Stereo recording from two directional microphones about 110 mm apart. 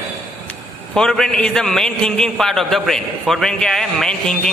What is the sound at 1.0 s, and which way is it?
A man's voice, 5° left (ahead or behind).